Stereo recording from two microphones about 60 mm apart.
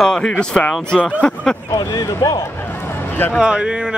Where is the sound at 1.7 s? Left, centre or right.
Left.